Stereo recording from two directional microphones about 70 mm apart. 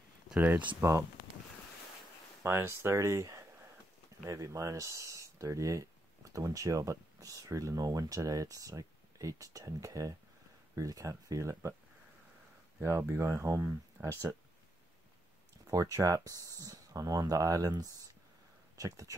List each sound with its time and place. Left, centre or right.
0.3 s speech: right
2.4 s speech: right
13.4 s speech: right
15.6 s speech: right